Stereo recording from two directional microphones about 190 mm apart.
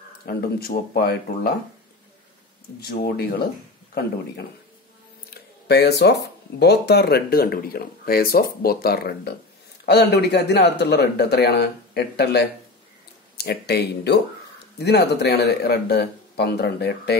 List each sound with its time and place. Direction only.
0.3 s speech: 55° left (ahead or behind)
2.8 s speech: 55° left (ahead or behind)
5.3 s a sound: 60° left (ahead or behind)
6.6 s speech: 60° left (ahead or behind)